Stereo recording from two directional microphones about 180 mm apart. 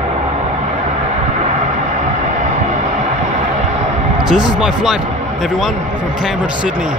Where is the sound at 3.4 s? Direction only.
35° right (ahead or behind).